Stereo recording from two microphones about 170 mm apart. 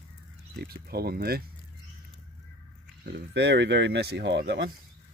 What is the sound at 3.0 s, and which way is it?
Speech, 85° right.